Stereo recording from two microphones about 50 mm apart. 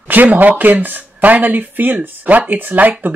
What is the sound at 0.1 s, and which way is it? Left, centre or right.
Speech, right.